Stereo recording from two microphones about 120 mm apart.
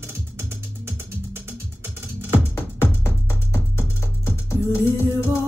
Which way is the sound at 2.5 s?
20° left (ahead or behind).